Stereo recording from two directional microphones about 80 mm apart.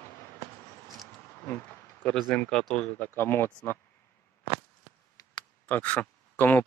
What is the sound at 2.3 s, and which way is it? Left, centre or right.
Speech, centre.